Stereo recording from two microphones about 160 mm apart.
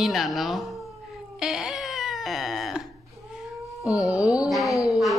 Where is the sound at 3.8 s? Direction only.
20° left (ahead or behind).